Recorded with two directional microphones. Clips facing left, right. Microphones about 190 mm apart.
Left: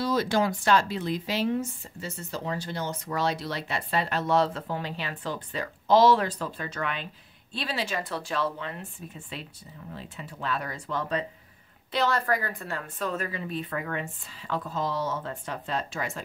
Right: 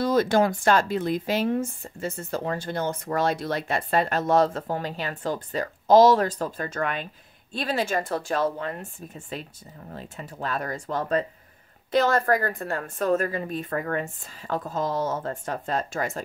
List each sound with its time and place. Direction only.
0.0 s a woman's voice: 50° right (ahead or behind)